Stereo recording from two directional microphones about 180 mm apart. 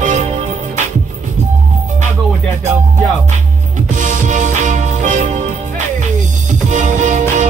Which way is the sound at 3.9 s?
45° right (ahead or behind).